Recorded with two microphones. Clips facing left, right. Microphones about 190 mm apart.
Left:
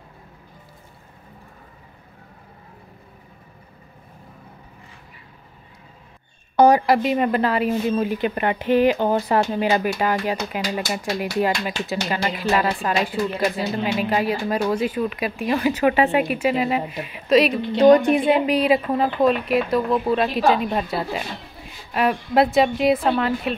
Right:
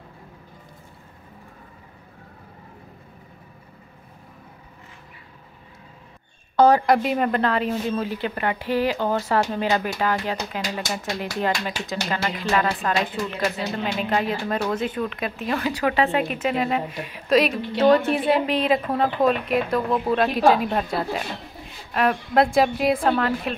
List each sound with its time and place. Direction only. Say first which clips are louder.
6.5 s a sound: left 2 dB; 15° left (ahead or behind)
6.9 s speech: left 1 dB; centre (ahead or behind)
17.7 s a woman's voice: left 4 dB; 15° left (ahead or behind)